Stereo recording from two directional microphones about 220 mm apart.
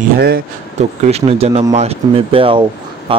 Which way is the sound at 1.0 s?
30° right (ahead or behind).